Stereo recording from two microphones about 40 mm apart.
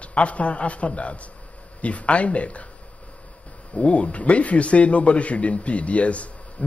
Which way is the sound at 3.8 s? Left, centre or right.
Left.